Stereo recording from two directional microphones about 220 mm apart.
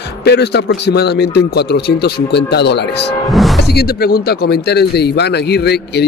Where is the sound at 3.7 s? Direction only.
45° left (ahead or behind).